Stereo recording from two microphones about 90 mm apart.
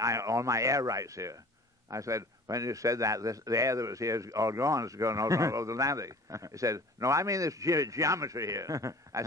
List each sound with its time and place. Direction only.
0.0 s a man's voice: 35° right (ahead or behind)